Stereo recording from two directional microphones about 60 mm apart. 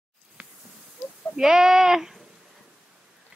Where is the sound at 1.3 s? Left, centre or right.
Centre.